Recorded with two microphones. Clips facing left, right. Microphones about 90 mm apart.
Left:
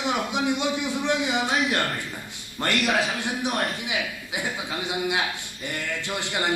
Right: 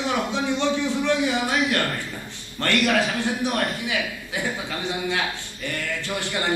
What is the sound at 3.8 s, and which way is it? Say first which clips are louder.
A man's voice: right 2 dB; 20° left (ahead or behind).